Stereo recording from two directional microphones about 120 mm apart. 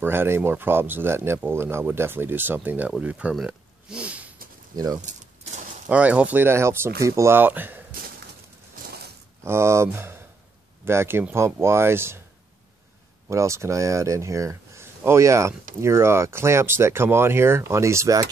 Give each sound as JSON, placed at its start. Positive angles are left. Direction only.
{"t": 0.0, "sound": "speech", "side_deg": -20}
{"t": 4.7, "sound": "speech", "side_deg": -30}
{"t": 5.9, "sound": "speech", "side_deg": -10}
{"t": 9.4, "sound": "speech", "side_deg": -20}
{"t": 13.3, "sound": "speech", "side_deg": -25}